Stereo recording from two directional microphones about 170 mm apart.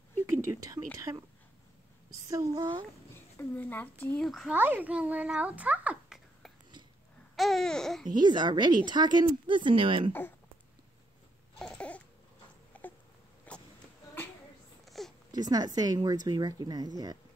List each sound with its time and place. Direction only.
0.3 s speech: 15° right (ahead or behind)
3.1 s a sound: 10° left (ahead or behind)
4.0 s babbling: 5° left (ahead or behind)
4.6 s a child's voice: 10° right (ahead or behind)
7.3 s babbling: centre (ahead or behind)
8.1 s speech: 25° right (ahead or behind)
11.5 s baby cry: 5° left (ahead or behind)
12.7 s cat: 10° left (ahead or behind)
13.5 s a sound: 10° left (ahead or behind)
14.9 s a sound: centre (ahead or behind)
15.3 s speech: 25° right (ahead or behind)